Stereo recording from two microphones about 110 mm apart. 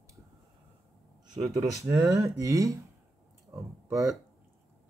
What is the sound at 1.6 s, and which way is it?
Speech, 25° right (ahead or behind).